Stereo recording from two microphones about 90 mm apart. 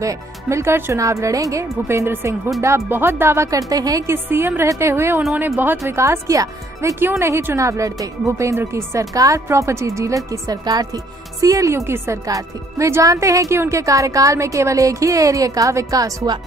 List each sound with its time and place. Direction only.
0.0 s speech: 35° right (ahead or behind)
4.1 s a woman's voice: 25° right (ahead or behind)
7.0 s speech: 30° right (ahead or behind)